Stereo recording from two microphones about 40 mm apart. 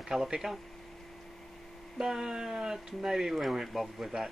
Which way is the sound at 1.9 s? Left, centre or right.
Centre.